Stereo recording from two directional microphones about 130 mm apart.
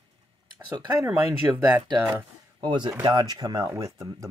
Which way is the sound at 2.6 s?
35° right (ahead or behind).